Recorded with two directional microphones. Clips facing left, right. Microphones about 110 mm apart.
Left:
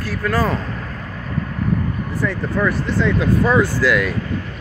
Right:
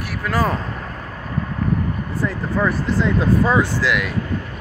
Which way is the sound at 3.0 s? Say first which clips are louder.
Even; 35° right (ahead or behind).